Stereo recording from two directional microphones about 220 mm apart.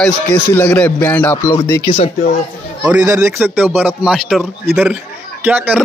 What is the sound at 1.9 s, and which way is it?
Speech, 30° left (ahead or behind).